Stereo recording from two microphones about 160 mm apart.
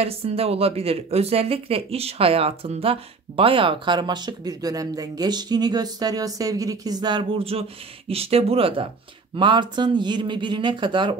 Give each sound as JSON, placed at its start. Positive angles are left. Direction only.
{"t": 0.0, "sound": "speech", "side_deg": -40}